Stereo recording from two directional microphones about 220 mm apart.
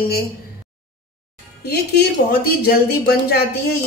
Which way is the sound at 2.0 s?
45° left (ahead or behind).